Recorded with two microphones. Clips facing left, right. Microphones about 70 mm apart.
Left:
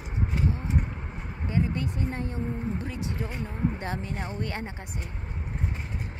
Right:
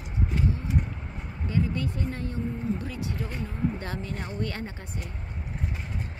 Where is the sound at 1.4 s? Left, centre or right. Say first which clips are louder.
Even; left.